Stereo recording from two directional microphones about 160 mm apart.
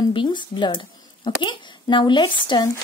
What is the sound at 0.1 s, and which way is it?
Speech, 30° left (ahead or behind).